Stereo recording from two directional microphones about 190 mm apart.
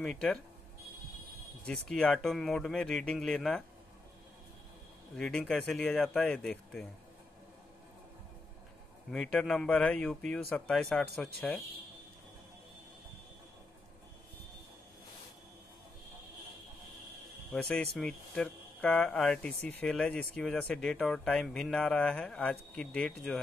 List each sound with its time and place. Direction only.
1.7 s speech: 5° left (ahead or behind)
5.1 s speech: 5° left (ahead or behind)
9.1 s speech: 5° left (ahead or behind)
17.5 s speech: 5° left (ahead or behind)